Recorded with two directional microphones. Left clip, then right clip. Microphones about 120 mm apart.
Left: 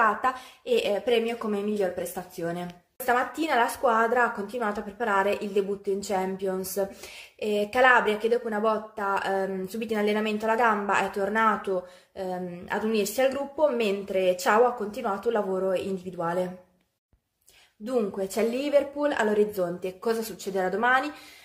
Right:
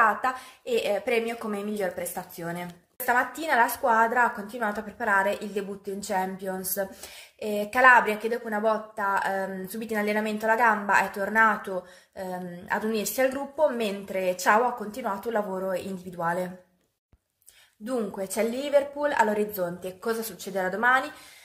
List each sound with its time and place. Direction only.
0.0 s a woman's voice: 25° left (ahead or behind)
17.8 s a woman's voice: 25° left (ahead or behind)